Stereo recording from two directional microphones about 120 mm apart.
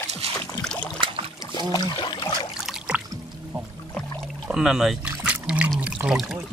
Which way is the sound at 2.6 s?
10° right (ahead or behind).